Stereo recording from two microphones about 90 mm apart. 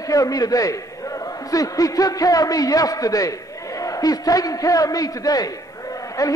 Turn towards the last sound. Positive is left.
turn(degrees=40)  # may be behind; listen again after turning